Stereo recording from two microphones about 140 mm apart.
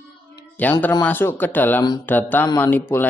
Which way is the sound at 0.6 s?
10° left (ahead or behind).